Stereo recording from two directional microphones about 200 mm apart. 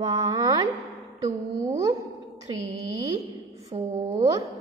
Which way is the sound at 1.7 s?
15° right (ahead or behind).